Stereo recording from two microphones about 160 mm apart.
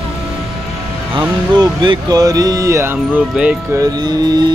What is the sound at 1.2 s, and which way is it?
Speech, 30° right (ahead or behind).